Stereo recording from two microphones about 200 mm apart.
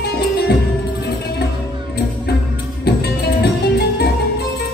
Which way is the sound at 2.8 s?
55° left (ahead or behind).